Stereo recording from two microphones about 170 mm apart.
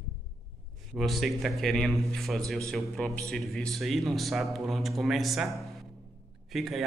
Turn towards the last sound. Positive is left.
turn(degrees=0)  # may be behind; listen again after turning